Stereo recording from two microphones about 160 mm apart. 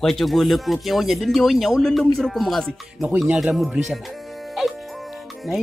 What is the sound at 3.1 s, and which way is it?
Speech, 15° right (ahead or behind).